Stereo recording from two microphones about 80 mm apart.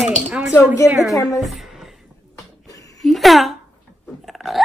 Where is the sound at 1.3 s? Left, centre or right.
Centre.